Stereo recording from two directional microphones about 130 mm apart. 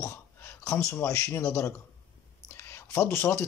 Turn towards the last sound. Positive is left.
turn(degrees=20)  # may be behind; listen again after turning